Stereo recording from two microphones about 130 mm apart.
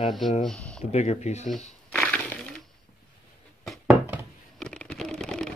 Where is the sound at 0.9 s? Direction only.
60° left (ahead or behind).